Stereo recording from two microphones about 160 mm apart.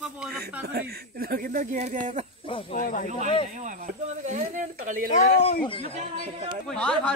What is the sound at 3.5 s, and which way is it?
Speech, 55° right (ahead or behind).